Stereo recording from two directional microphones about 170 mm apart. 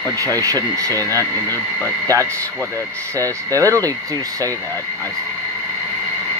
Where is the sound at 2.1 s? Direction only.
20° right (ahead or behind).